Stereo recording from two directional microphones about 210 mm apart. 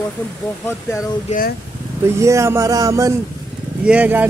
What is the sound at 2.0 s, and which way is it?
Speech, 15° right (ahead or behind).